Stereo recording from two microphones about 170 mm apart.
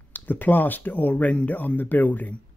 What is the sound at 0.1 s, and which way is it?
Speech, 10° left (ahead or behind).